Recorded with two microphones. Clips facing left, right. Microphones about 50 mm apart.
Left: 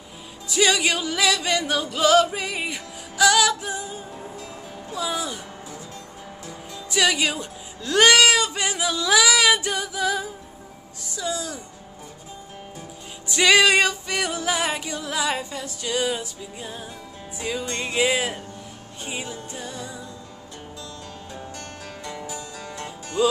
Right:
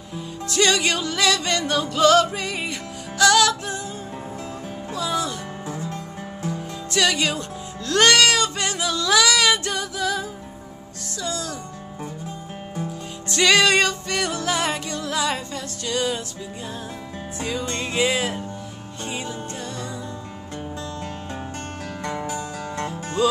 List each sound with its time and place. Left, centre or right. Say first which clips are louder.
0.5 s music: even; centre
4.9 s music: right 2 dB; centre
6.9 s speech: even; centre
11.1 s music: even; centre
13.3 s music: even; centre
17.4 s music: right 1 dB; centre
22.0 s music: right 7 dB; right
23.2 s music: even; centre